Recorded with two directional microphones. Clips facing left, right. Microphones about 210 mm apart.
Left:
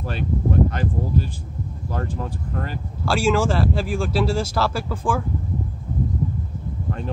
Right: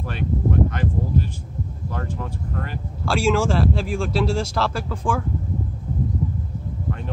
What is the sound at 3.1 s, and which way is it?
Speech, centre (ahead or behind).